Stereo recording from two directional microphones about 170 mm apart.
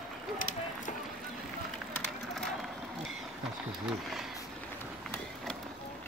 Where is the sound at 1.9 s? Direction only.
5° left (ahead or behind).